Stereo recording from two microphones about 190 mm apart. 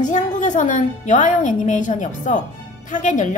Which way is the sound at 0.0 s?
40° left (ahead or behind).